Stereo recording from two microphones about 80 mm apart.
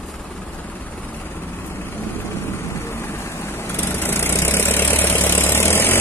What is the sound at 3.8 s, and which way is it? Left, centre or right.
Vehicle, left.